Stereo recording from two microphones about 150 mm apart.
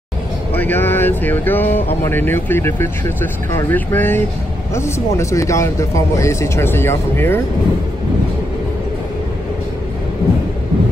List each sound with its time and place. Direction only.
0.6 s speech: 15° left (ahead or behind)